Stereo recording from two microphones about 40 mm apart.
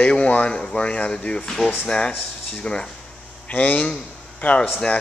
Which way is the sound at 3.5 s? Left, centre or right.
Left.